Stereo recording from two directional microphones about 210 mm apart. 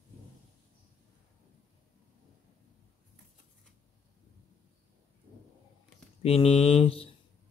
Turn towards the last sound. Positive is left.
turn(degrees=25)  # may be behind; listen again after turning